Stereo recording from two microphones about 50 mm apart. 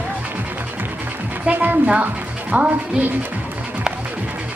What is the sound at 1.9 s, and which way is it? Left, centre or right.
Speech, right.